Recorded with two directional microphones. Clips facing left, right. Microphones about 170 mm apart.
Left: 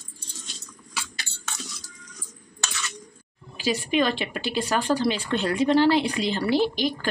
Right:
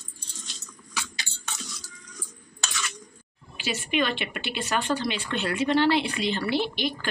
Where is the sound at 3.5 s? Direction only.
35° left (ahead or behind).